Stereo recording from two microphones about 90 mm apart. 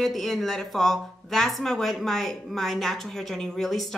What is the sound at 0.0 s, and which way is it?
A woman's voice, centre (ahead or behind).